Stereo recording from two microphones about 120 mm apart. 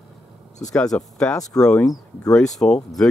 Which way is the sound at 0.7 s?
5° left (ahead or behind).